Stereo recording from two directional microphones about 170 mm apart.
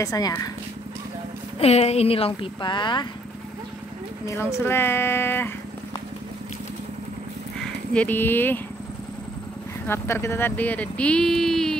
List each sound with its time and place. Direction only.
0.0 s speech: 20° left (ahead or behind)
1.6 s speech: 40° left (ahead or behind)
4.3 s speech: 15° left (ahead or behind)
7.9 s speech: 10° left (ahead or behind)
9.8 s speech: 15° left (ahead or behind)